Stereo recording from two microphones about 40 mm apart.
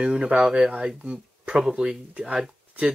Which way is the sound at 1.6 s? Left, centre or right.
Centre.